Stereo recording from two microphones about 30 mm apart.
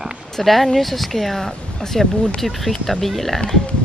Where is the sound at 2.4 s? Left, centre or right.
Centre.